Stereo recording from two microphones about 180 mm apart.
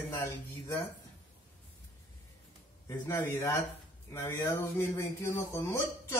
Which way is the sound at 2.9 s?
15° left (ahead or behind).